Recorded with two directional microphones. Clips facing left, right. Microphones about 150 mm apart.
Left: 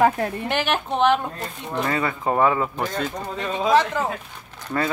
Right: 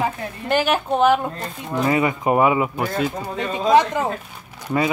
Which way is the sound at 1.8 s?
15° right (ahead or behind).